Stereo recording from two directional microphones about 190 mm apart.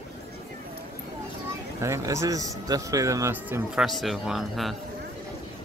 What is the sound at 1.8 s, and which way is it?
A man's voice, 15° right (ahead or behind).